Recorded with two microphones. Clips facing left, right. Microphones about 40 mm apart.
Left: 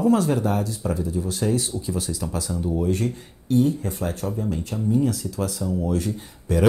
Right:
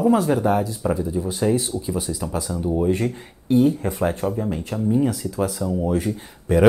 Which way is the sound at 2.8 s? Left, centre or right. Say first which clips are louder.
Right 4 dB; right.